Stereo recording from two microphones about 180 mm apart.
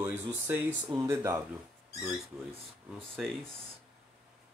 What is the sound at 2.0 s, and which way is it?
Speech, centre (ahead or behind).